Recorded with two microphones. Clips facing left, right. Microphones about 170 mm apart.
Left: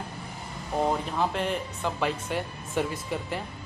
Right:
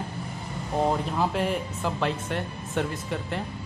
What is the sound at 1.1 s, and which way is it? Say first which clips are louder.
Speech: right 2 dB; 5° right (ahead or behind).